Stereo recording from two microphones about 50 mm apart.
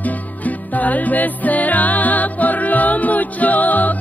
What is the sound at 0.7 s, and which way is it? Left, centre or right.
Music, left.